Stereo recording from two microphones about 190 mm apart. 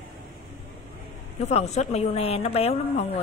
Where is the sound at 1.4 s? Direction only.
35° left (ahead or behind).